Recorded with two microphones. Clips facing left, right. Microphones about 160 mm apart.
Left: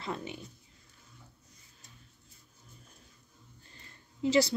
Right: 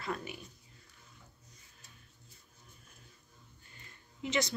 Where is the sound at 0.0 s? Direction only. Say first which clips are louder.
Left 1 dB; 25° left (ahead or behind).